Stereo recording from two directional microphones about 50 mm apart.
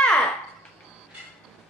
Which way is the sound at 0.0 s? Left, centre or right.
Left.